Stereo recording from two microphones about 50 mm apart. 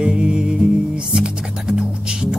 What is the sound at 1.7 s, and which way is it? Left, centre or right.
Music, centre.